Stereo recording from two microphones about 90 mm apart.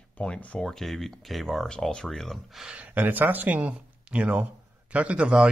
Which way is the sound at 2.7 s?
20° right (ahead or behind).